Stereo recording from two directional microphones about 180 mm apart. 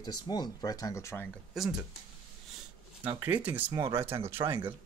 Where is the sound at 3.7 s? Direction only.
30° right (ahead or behind).